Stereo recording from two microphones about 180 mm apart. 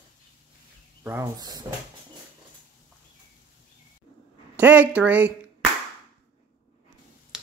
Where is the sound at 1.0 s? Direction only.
15° right (ahead or behind).